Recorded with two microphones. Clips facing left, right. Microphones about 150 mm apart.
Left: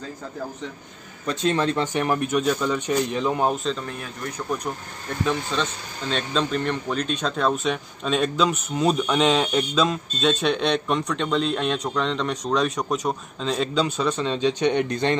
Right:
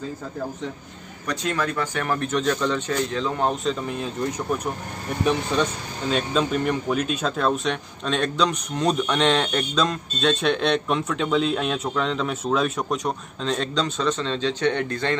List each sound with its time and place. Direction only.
1.2 s speech: 25° left (ahead or behind)
3.8 s speech: 20° right (ahead or behind); by 15.1 s 20° left (ahead or behind)